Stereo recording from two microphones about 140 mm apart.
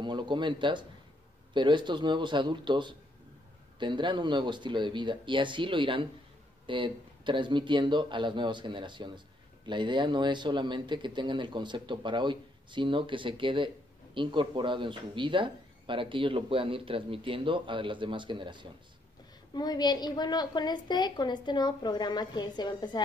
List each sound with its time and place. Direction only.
0.0 s speech: 35° right (ahead or behind)
19.5 s a woman's voice: 30° left (ahead or behind)